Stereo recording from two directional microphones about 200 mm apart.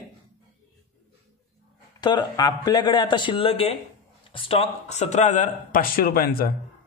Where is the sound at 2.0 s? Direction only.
20° left (ahead or behind); by 6.5 s 50° left (ahead or behind).